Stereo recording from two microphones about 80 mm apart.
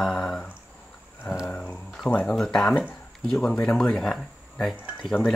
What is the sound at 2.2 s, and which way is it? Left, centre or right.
Speech, centre.